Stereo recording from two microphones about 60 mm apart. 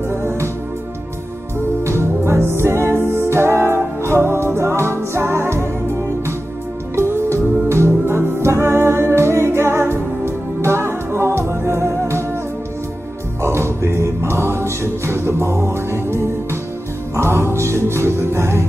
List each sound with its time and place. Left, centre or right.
0.1 s music: right
1.8 s music: right
7.0 s music: right
13.4 s music: right